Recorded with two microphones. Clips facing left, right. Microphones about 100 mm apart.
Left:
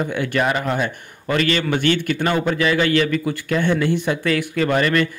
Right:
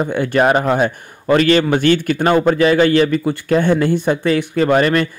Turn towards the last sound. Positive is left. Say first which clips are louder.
# right 4 dB
turn(degrees=-35)  # may be behind; listen again after turning